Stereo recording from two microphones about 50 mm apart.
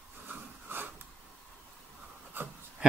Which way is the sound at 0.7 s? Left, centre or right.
Right.